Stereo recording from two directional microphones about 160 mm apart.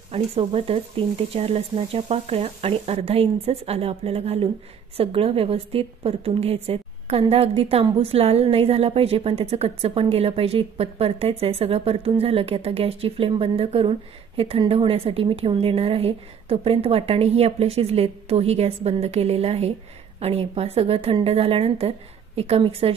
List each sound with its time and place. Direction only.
0.1 s a woman's voice: 40° right (ahead or behind)